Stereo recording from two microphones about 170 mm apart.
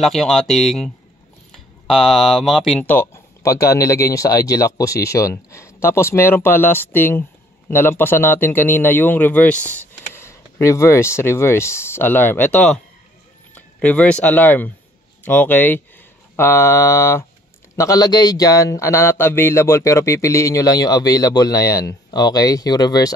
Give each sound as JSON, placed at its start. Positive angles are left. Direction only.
{"t": 0.0, "sound": "speech", "side_deg": 0}
{"t": 2.9, "sound": "speech", "side_deg": 15}